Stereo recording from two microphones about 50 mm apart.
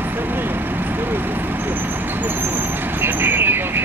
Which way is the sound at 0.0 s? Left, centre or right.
Right.